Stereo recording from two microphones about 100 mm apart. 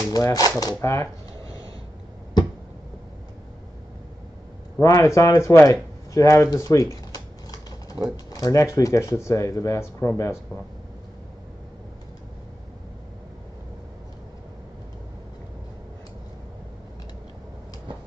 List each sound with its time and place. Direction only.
0.1 s speech: 35° left (ahead or behind)
4.7 s speech: 30° left (ahead or behind)